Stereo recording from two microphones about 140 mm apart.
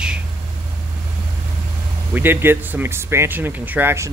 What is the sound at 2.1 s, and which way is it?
Speech, 15° right (ahead or behind).